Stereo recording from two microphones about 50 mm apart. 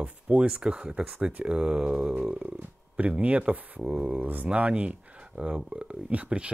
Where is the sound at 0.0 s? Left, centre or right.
Right.